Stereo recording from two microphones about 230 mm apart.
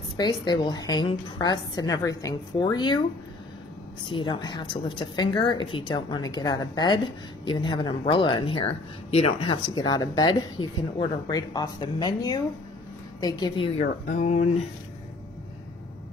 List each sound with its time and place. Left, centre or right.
0.2 s speech: centre
4.0 s speech: left